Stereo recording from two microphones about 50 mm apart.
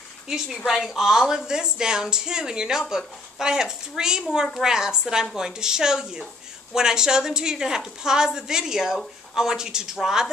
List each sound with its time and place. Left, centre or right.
0.7 s a woman's voice: centre